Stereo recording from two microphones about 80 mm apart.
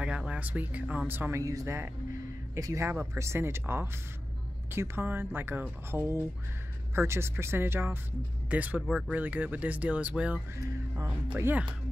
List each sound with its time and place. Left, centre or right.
0.0 s speech: centre
1.4 s speech: right; by 8.8 s centre
8.8 s speech: centre
9.1 s speech: right